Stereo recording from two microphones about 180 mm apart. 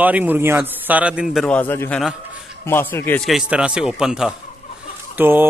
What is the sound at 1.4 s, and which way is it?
A man's voice, 10° left (ahead or behind).